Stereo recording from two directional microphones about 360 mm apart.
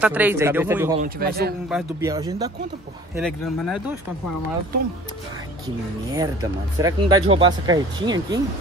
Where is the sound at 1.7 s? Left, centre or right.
Centre.